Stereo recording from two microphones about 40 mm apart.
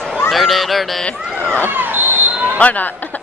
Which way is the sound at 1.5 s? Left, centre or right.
Right.